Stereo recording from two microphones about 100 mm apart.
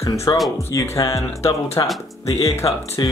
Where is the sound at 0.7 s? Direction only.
30° left (ahead or behind).